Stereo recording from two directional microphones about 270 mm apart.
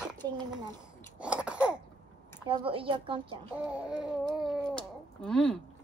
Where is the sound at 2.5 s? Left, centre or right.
Centre.